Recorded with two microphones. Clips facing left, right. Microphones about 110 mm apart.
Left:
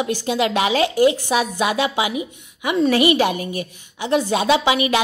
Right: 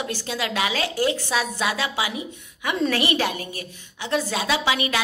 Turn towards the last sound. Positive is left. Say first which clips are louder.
# left 6 dB
turn(degrees=20)  # may be behind; listen again after turning